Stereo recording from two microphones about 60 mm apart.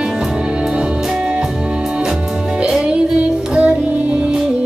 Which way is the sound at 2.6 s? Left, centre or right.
Centre.